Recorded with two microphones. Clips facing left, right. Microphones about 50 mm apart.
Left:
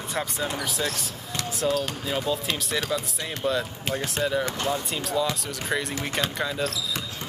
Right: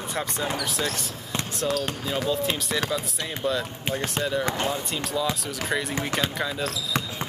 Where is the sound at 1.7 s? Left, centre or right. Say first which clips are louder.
Even; centre.